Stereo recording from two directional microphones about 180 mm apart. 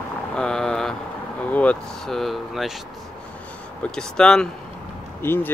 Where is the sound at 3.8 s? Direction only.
5° left (ahead or behind).